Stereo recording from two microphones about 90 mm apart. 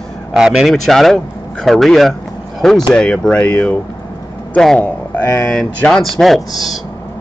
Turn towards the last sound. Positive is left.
turn(degrees=0)  # may be behind; listen again after turning